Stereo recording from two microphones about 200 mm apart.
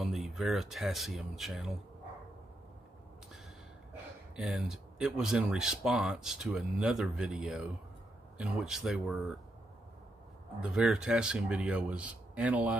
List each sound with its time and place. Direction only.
0.1 s speech: centre (ahead or behind)
4.4 s speech: 5° right (ahead or behind)
10.6 s speech: 5° right (ahead or behind)